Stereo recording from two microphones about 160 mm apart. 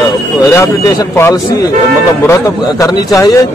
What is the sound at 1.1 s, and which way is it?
A man's voice, 15° left (ahead or behind).